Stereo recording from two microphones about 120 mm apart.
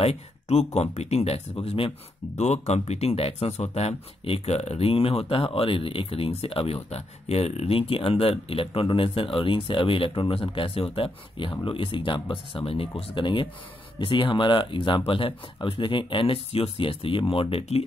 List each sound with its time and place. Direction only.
0.0 s speech: 60° left (ahead or behind)
2.3 s speech: 65° left (ahead or behind)